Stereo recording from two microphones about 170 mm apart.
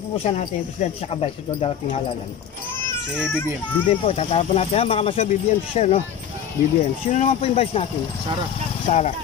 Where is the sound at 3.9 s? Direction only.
35° left (ahead or behind).